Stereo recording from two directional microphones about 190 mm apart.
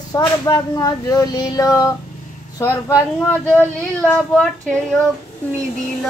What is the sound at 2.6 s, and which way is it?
Speech, 15° left (ahead or behind).